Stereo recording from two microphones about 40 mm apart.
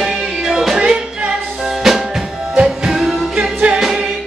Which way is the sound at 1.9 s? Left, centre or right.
Centre.